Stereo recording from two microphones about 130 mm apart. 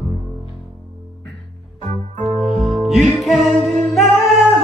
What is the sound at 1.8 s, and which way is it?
Music, 55° right (ahead or behind).